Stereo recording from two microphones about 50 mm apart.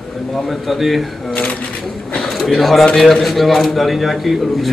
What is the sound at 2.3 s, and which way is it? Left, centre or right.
A man's voice, centre.